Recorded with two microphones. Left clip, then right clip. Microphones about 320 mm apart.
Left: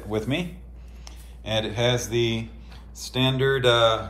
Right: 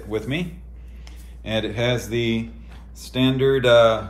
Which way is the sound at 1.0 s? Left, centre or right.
Centre.